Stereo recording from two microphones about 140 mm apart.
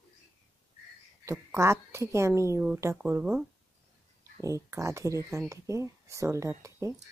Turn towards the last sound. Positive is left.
turn(degrees=-20)  # may be behind; listen again after turning